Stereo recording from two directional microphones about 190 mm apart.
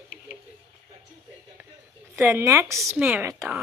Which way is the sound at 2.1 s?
15° right (ahead or behind).